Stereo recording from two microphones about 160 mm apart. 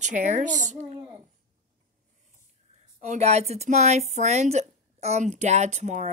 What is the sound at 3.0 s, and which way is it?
A woman's voice, 45° right (ahead or behind).